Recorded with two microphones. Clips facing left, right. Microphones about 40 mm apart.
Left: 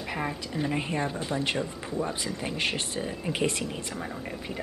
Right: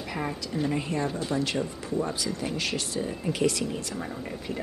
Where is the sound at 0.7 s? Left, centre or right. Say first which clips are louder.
Right 1 dB; left.